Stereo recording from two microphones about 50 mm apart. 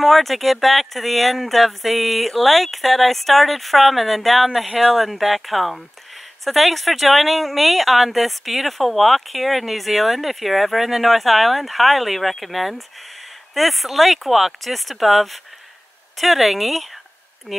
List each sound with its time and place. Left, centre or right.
0.0 s speech: centre